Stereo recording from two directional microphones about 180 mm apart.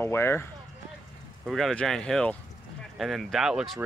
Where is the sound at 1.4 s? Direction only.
Centre (ahead or behind).